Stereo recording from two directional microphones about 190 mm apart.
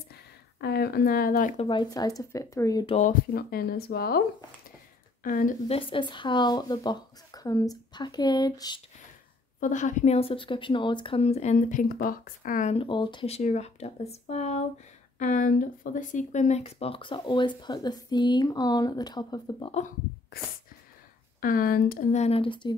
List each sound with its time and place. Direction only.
0.6 s speech: 55° left (ahead or behind)
1.6 s speech: 25° left (ahead or behind)
3.0 s speech: 50° left (ahead or behind)
5.2 s a woman's voice: 45° left (ahead or behind)
5.7 s speech: 25° left (ahead or behind)
9.6 s speech: 40° left (ahead or behind)
11.5 s speech: 50° left (ahead or behind)
12.7 s speech: 25° left (ahead or behind)
21.4 s speech: 50° left (ahead or behind); by 22.8 s 25° left (ahead or behind)